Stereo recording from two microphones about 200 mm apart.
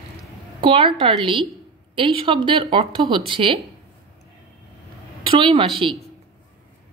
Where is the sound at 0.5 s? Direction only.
25° right (ahead or behind).